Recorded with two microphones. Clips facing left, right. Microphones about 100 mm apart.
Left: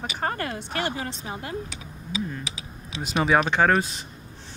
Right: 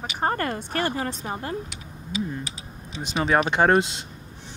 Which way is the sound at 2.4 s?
90° left.